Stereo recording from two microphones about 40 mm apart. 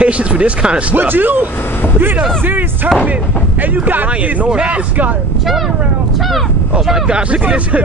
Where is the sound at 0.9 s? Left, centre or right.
Right.